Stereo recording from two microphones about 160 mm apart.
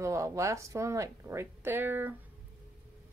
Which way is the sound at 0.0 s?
20° right (ahead or behind).